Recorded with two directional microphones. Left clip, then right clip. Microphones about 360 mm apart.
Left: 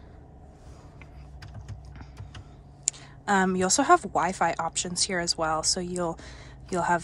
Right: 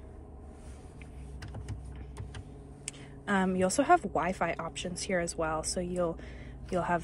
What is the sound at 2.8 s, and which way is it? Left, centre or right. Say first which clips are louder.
Speech: left 9 dB; centre.